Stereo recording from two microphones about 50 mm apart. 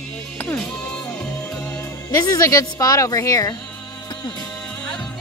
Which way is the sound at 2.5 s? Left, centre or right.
Left.